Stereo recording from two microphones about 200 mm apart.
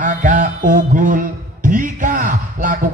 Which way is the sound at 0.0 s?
40° right (ahead or behind).